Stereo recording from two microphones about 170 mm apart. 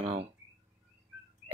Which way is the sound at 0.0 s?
30° right (ahead or behind).